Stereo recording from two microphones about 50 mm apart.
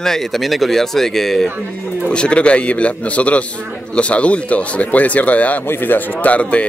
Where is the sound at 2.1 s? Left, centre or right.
Left.